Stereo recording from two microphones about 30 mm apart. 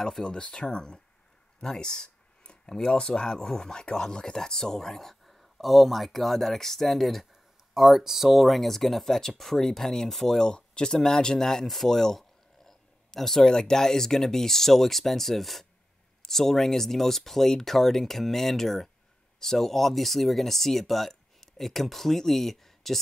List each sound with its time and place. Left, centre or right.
0.2 s speech: left
1.6 s a sound: left
2.7 s speech: left; by 7.2 s centre
7.7 s speech: centre
10.4 s speech: left; by 22.9 s centre